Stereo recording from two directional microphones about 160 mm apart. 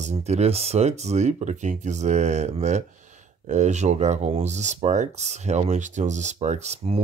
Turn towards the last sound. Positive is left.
turn(degrees=-40)  # may be behind; listen again after turning